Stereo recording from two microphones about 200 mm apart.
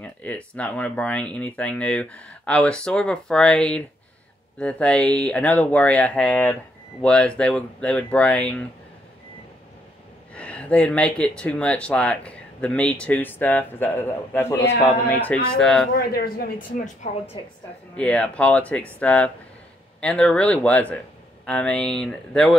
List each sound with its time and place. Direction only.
0.0 s speech: 5° left (ahead or behind)
10.3 s speech: 5° left (ahead or behind)
15.9 s a woman's voice: 50° left (ahead or behind)
17.9 s speech: 5° left (ahead or behind)